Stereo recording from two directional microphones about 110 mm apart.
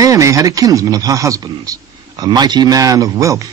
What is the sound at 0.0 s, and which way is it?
Speech, 30° right (ahead or behind).